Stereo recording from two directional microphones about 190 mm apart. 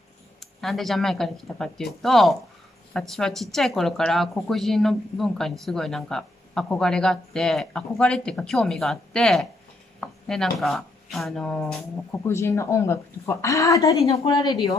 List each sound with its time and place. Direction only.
0.4 s speech: centre (ahead or behind)
12.1 s a woman's voice: 15° left (ahead or behind)
14.0 s a woman's voice: 30° left (ahead or behind)
14.3 s speech: 20° left (ahead or behind)